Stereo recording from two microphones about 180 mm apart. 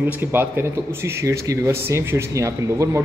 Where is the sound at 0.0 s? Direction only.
10° right (ahead or behind).